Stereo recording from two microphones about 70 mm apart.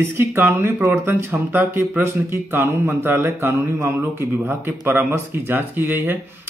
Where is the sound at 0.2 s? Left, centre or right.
Right.